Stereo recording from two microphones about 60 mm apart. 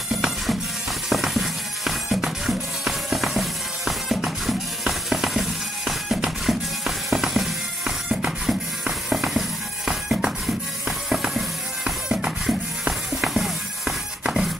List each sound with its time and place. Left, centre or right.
0.1 s music: centre
8.1 s music: centre